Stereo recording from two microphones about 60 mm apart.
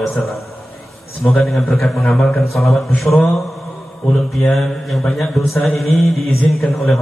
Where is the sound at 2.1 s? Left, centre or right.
Centre.